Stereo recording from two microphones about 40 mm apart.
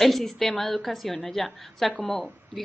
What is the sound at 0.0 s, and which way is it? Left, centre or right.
A woman's voice, centre.